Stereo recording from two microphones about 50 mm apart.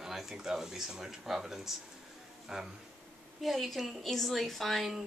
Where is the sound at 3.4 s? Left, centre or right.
Centre.